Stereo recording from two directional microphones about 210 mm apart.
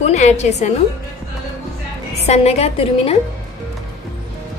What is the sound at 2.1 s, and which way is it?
A woman's voice, 30° left (ahead or behind).